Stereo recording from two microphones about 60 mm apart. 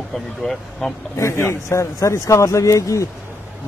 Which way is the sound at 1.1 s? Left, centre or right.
Left.